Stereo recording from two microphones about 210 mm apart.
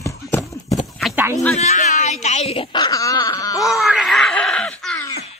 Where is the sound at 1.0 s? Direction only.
Centre (ahead or behind).